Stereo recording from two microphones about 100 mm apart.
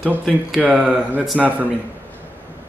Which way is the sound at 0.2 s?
5° left (ahead or behind).